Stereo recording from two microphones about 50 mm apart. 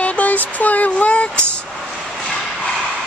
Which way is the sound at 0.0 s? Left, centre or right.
Left.